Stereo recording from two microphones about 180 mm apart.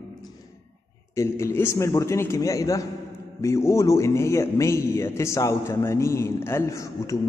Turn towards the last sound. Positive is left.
turn(degrees=15)  # may be behind; listen again after turning